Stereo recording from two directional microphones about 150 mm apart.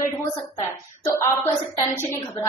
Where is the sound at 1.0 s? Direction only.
15° left (ahead or behind).